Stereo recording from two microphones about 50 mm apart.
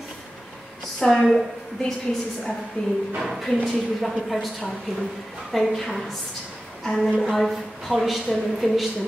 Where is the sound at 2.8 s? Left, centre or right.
Left.